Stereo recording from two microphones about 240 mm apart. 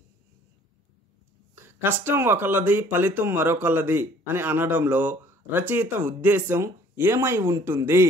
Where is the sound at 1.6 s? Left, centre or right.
Centre.